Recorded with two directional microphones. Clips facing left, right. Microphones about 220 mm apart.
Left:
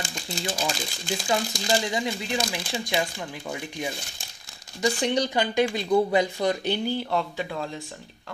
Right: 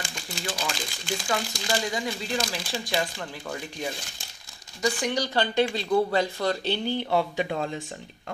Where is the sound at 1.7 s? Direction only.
20° left (ahead or behind).